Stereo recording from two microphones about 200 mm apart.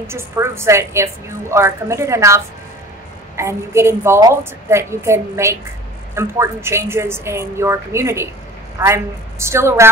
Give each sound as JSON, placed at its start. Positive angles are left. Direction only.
{"t": 0.0, "sound": "a woman's voice", "side_deg": -15}